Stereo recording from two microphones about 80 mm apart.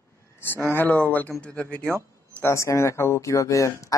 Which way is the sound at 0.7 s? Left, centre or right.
Left.